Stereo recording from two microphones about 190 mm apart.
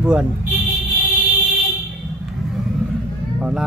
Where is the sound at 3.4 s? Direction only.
5° right (ahead or behind).